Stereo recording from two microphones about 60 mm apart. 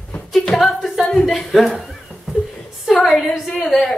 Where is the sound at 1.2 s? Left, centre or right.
Centre.